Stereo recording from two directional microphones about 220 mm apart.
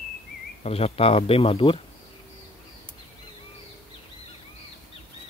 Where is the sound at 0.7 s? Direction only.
25° left (ahead or behind).